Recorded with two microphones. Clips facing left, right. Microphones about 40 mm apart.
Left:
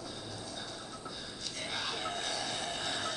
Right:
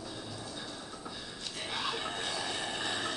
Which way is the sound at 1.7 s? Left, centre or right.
Right.